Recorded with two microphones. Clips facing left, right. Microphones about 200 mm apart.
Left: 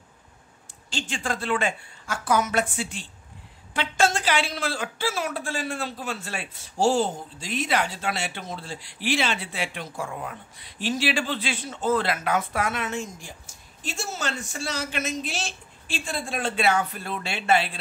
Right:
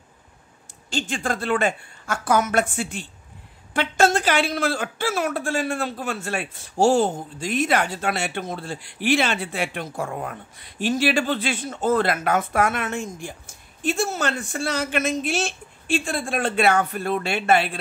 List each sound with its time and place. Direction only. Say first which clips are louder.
0.9 s speech: right 4 dB; 55° right (ahead or behind)